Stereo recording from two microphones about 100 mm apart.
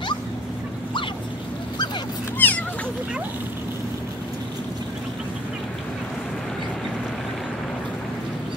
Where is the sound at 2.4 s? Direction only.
15° left (ahead or behind).